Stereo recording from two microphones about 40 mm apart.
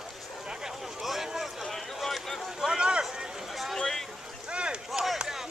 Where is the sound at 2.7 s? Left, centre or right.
Right.